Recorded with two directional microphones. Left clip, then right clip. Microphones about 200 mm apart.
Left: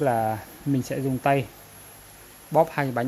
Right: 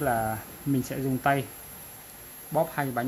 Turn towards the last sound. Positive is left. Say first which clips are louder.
# left 5 dB
turn(degrees=40)  # may be behind; listen again after turning